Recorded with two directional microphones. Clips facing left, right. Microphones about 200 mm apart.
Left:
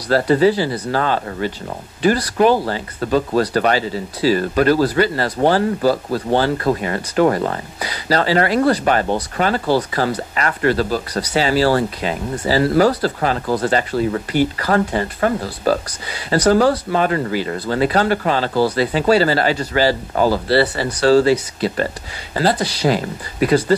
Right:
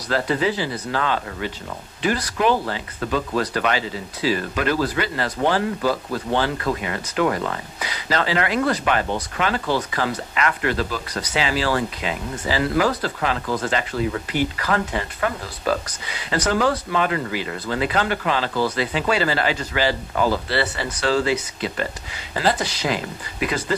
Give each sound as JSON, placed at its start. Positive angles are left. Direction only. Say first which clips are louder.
{"t": 0.1, "sound": "speech", "louder": "left 8 dB", "side_deg": 35}